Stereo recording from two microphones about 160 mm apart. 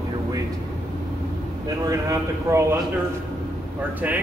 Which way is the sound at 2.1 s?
15° right (ahead or behind).